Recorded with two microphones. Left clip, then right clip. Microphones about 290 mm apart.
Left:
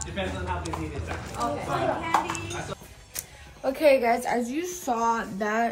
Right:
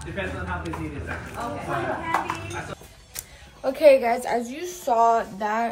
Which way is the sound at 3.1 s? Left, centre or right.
Centre.